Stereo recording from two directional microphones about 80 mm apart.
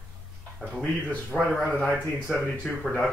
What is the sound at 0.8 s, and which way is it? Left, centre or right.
Speech, centre.